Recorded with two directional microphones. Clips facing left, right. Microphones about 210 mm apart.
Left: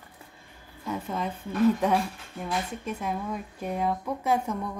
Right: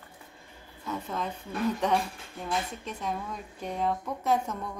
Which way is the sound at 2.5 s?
10° left (ahead or behind).